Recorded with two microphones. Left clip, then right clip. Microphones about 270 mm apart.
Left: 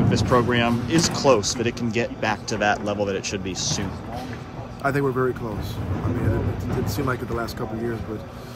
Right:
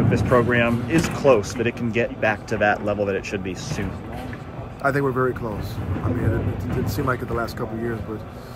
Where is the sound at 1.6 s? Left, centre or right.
Left.